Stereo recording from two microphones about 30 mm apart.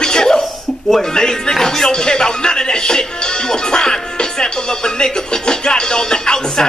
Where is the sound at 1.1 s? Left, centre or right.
Left.